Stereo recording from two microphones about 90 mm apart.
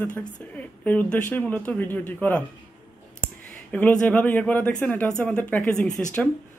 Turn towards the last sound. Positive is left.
turn(degrees=5)  # may be behind; listen again after turning